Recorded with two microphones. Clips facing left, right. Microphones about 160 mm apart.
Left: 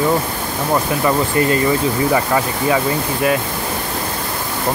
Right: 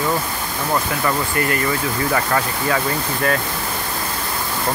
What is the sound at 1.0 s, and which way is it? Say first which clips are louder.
Speech: left 5 dB; 20° left (ahead or behind).